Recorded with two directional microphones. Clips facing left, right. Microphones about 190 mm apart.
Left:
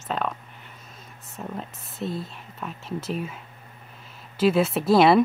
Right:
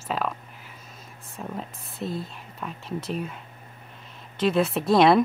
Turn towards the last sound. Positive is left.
turn(degrees=0)  # may be behind; listen again after turning